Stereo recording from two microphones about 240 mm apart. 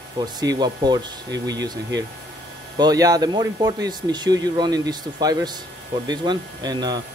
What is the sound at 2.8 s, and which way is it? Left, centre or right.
Speech, centre.